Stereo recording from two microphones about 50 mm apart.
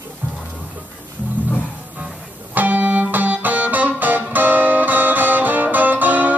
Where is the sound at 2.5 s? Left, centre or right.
Right.